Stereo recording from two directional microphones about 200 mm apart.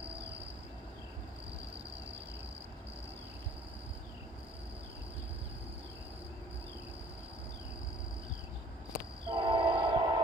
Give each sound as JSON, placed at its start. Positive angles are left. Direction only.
{"t": 9.3, "sound": "train", "side_deg": -25}